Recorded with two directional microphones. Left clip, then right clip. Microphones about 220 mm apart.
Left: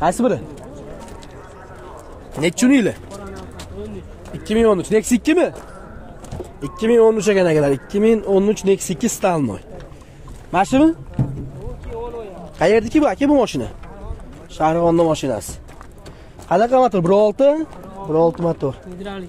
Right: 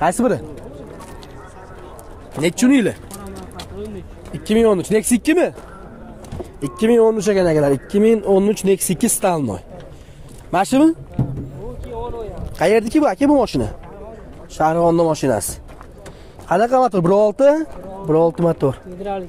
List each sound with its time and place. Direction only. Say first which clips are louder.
0.0 s speech: even; 20° right (ahead or behind)
2.3 s speech: even; 5° right (ahead or behind)
4.3 s speech: right 1 dB; 20° right (ahead or behind)
6.6 s speech: even; 25° right (ahead or behind)
12.0 s speech: right 1 dB; 35° right (ahead or behind)